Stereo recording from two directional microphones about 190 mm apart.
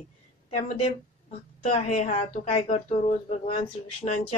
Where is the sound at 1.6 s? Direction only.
35° left (ahead or behind).